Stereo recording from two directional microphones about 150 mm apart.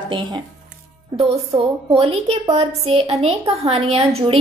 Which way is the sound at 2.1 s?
45° right (ahead or behind).